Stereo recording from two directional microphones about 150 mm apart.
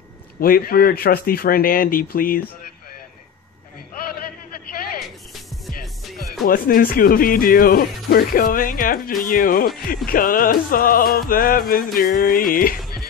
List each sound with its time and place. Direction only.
0.4 s music: 75° left (ahead or behind)
6.4 s music: 75° left (ahead or behind)